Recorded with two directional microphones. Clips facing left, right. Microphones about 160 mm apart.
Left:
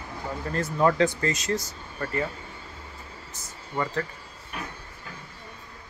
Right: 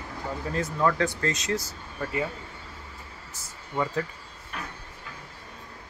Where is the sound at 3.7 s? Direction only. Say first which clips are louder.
Right 1 dB; 5° right (ahead or behind).